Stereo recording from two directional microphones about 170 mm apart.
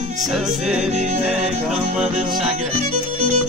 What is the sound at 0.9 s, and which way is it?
Music, 40° right (ahead or behind).